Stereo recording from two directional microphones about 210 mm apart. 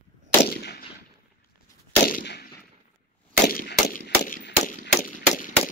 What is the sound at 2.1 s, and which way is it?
Gunshot, 50° left (ahead or behind).